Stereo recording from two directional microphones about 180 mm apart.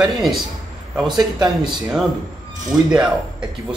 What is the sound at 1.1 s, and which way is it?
Speech, 25° right (ahead or behind).